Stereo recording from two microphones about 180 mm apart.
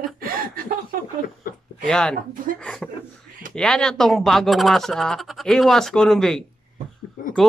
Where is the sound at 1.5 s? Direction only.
50° left (ahead or behind).